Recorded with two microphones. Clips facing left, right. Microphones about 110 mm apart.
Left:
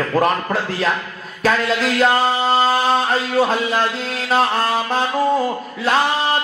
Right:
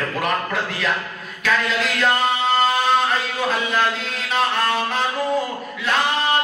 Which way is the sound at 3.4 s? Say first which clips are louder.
Left 5 dB; 35° left (ahead or behind).